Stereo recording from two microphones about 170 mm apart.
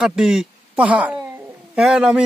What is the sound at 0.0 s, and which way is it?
A man's voice, 5° right (ahead or behind).